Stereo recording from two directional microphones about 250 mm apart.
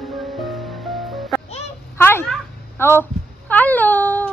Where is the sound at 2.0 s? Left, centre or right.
Centre.